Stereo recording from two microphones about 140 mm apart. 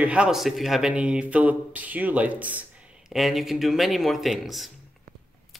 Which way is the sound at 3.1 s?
Centre (ahead or behind).